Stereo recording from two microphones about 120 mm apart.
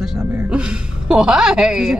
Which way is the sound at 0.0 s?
10° right (ahead or behind).